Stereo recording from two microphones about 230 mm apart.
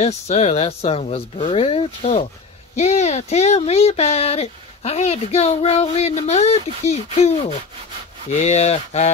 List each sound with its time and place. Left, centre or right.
0.0 s speech: left